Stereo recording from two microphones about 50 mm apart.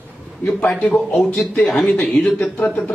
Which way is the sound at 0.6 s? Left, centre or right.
Left.